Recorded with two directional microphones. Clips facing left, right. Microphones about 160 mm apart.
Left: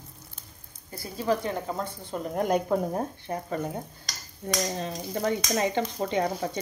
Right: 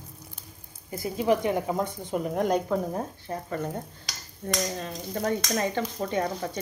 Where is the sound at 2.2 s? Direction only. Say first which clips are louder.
Even; centre (ahead or behind).